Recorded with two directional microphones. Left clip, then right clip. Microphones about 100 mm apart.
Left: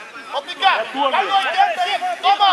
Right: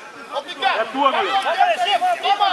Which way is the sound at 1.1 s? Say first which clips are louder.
Left 2 dB; 20° left (ahead or behind).